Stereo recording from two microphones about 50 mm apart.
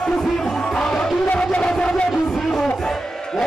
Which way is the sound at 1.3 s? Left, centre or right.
Left.